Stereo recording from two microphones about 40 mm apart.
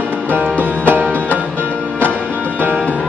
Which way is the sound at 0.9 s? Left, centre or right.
Right.